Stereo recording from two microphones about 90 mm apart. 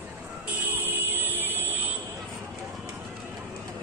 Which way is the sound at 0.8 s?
25° right (ahead or behind).